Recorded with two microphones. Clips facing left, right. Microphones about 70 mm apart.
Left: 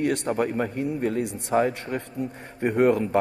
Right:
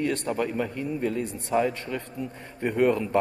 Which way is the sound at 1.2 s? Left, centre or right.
Left.